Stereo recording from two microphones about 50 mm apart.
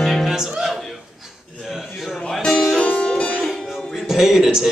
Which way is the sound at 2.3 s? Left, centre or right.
Centre.